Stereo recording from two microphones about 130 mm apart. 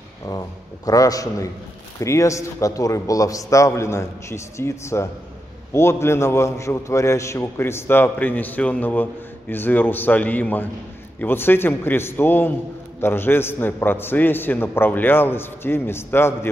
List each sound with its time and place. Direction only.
0.8 s a man's voice: 30° left (ahead or behind)